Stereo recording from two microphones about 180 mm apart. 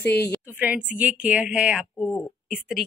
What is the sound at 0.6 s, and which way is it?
A woman's voice, 5° right (ahead or behind).